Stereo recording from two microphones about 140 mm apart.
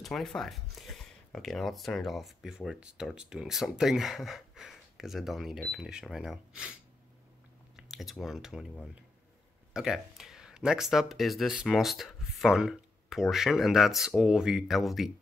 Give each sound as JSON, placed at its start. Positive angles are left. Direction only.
{"t": 0.0, "sound": "speech", "side_deg": 0}
{"t": 9.8, "sound": "speech", "side_deg": -5}